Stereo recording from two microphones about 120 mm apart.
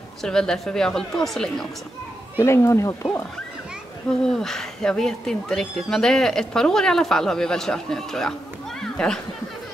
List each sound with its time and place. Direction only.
0.2 s speech: 5° left (ahead or behind)
2.3 s speech: 20° left (ahead or behind)
4.3 s speech: 5° left (ahead or behind)